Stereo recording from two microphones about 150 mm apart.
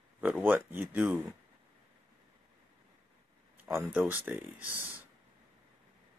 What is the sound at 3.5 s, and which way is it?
Speech, 15° right (ahead or behind).